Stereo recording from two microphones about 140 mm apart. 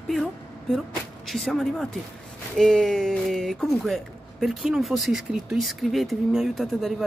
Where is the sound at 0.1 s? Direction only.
Centre (ahead or behind).